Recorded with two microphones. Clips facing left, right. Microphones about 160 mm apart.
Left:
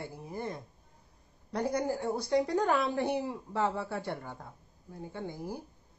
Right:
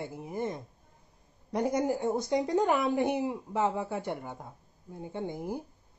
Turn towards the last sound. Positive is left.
turn(degrees=-20)  # may be behind; listen again after turning